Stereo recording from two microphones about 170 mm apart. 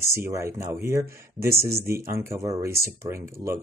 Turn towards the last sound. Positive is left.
turn(degrees=-15)  # may be behind; listen again after turning